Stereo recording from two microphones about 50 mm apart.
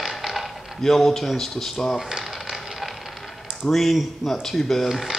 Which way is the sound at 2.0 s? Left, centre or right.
Centre.